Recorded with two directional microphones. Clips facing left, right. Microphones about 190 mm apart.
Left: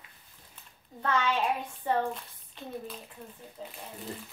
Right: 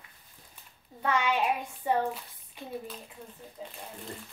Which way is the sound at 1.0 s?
10° right (ahead or behind).